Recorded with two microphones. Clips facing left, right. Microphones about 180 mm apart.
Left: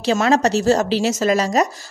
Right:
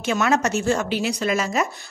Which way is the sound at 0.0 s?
30° left (ahead or behind).